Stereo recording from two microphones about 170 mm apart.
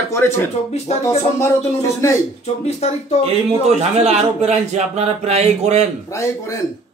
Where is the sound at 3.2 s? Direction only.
40° right (ahead or behind).